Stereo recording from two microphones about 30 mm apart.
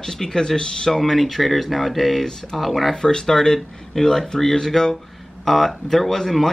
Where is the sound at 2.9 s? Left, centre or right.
Centre.